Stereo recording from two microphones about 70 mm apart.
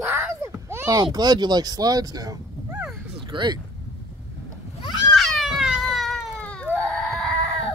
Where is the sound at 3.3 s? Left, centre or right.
Right.